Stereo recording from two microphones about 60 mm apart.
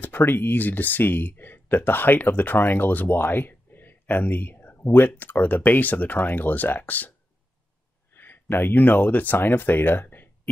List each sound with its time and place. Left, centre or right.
0.0 s speech: left